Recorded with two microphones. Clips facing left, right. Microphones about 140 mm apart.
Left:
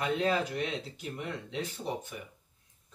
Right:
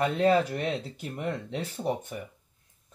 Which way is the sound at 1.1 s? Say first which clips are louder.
Right 5 dB; 45° right (ahead or behind).